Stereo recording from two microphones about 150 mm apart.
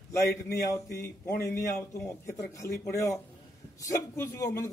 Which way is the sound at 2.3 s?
20° left (ahead or behind).